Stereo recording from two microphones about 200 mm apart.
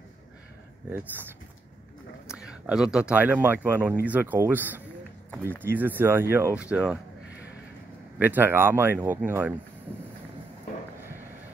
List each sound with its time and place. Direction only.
2.2 s speech: 5° right (ahead or behind)
8.2 s speech: 10° right (ahead or behind)